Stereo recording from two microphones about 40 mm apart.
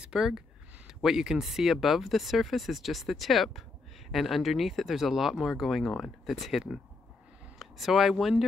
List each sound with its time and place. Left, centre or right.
0.0 s speech: centre